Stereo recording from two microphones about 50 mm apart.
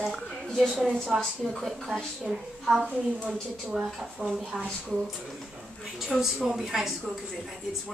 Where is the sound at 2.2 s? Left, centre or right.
Centre.